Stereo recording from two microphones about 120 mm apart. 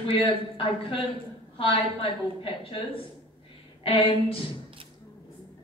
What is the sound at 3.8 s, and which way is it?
Speech, 50° left (ahead or behind).